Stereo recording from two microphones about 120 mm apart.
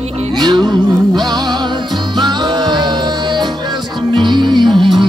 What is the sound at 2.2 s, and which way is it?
Music, 40° right (ahead or behind).